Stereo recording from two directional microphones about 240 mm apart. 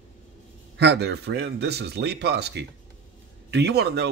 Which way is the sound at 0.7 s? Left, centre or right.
Right.